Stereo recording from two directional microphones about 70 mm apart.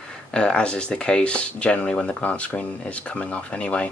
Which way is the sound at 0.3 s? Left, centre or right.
Centre.